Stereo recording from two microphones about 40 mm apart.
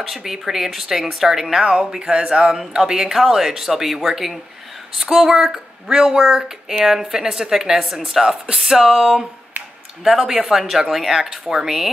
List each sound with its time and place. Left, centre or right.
0.0 s speech: centre